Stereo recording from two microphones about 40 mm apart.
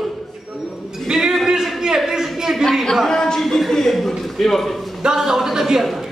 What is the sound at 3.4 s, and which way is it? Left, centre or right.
A man's voice, centre.